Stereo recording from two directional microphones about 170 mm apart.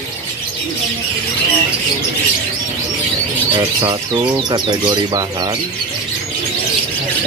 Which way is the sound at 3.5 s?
25° right (ahead or behind).